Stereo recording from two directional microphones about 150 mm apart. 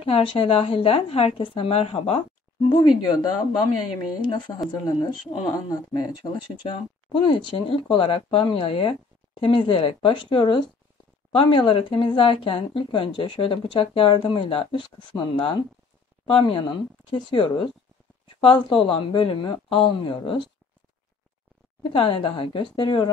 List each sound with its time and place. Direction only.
0.0 s speech: 35° left (ahead or behind)
4.6 s speech: 30° left (ahead or behind)
21.9 s speech: 35° left (ahead or behind)